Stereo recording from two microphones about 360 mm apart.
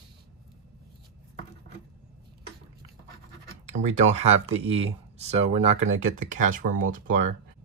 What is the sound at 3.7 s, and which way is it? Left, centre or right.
Speech, centre.